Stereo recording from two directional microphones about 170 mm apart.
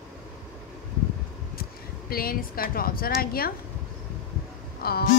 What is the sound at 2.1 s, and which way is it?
A woman's voice, 60° left (ahead or behind).